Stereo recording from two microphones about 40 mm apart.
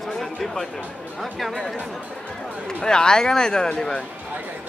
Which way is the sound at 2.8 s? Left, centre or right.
Centre.